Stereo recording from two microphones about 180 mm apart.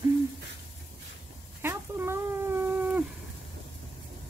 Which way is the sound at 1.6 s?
15° right (ahead or behind).